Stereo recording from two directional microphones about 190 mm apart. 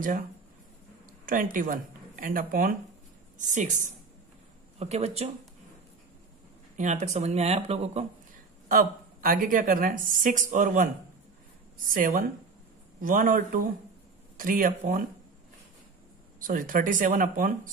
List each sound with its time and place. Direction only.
1.2 s speech: 45° right (ahead or behind)
6.8 s speech: 40° right (ahead or behind)
8.6 s a woman's voice: 50° right (ahead or behind)
11.9 s a woman's voice: 45° right (ahead or behind)
16.3 s a woman's voice: 45° right (ahead or behind)